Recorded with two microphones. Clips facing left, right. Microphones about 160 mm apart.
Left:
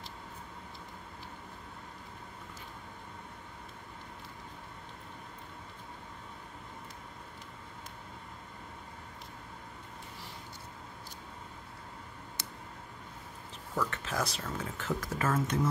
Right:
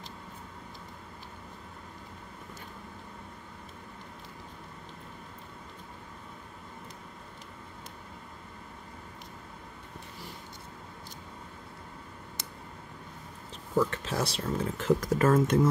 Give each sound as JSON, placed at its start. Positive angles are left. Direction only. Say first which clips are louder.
{"t": 13.7, "sound": "speech", "louder": "right 6 dB", "side_deg": -30}